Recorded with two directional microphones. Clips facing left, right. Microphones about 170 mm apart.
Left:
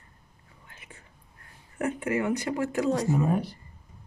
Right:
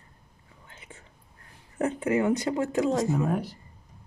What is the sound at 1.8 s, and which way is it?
Speech, 20° right (ahead or behind).